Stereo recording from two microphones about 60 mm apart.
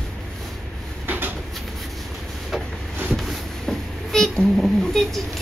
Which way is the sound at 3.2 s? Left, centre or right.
Centre.